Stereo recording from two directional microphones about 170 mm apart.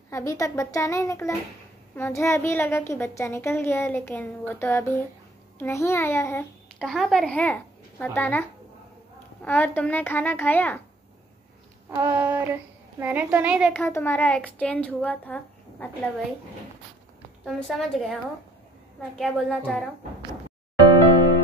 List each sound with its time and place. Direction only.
0.1 s a woman's voice: 20° left (ahead or behind)
6.8 s a woman's voice: centre (ahead or behind)
12.0 s a woman's voice: 10° right (ahead or behind)
13.7 s a woman's voice: 10° left (ahead or behind)
17.5 s a woman's voice: centre (ahead or behind)